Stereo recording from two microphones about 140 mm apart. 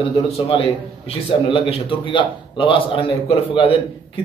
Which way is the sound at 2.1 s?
35° left (ahead or behind).